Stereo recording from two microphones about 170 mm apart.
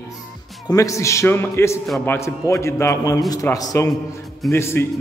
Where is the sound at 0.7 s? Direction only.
20° left (ahead or behind).